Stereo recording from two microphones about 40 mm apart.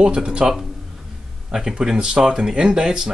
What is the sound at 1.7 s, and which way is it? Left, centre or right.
Speech, centre.